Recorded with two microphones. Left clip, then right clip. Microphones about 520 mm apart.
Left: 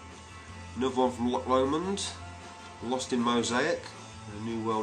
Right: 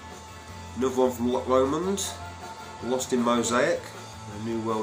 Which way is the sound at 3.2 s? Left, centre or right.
Left.